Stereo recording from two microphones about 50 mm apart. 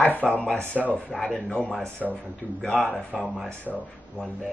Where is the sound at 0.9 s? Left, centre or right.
Centre.